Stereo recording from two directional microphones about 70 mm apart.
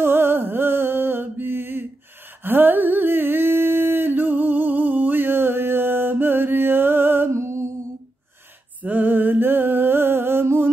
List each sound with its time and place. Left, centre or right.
0.0 s music: right
2.4 s humming: right
8.8 s music: right